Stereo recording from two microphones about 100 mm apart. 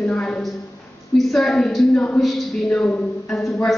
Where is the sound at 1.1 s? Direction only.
5° left (ahead or behind).